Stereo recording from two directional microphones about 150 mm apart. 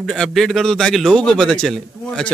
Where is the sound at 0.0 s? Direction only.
5° left (ahead or behind).